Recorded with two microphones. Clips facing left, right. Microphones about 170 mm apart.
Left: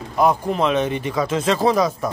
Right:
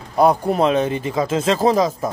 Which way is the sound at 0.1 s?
35° right (ahead or behind).